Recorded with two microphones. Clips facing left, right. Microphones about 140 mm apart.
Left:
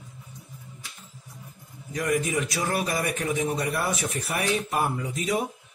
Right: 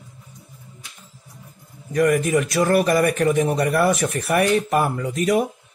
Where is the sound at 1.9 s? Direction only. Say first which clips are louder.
Right 8 dB; 65° right (ahead or behind).